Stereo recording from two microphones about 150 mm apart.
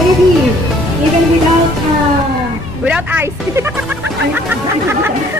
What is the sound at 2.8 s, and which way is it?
Speech, 10° right (ahead or behind).